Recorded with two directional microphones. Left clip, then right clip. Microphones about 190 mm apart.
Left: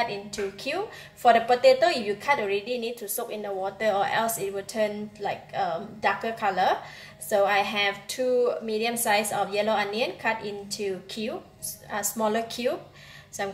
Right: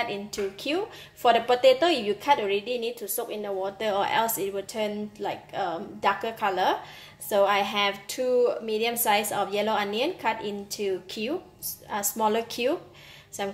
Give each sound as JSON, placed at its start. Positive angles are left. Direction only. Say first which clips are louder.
{"t": 0.3, "sound": "a woman's voice", "louder": "right 1 dB", "side_deg": -35}